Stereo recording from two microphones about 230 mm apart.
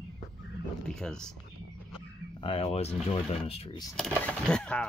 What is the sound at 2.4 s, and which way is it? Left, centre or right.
Speech, left.